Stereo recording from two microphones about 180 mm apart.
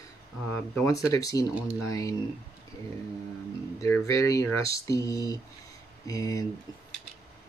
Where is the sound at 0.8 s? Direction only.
20° left (ahead or behind).